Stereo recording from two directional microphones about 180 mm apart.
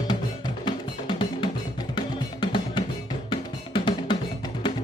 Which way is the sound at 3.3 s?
30° left (ahead or behind).